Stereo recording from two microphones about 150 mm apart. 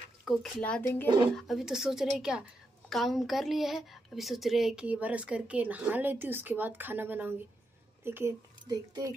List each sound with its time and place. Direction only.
0.2 s speech: centre (ahead or behind)
1.3 s a woman's voice: centre (ahead or behind); by 9.1 s 20° right (ahead or behind)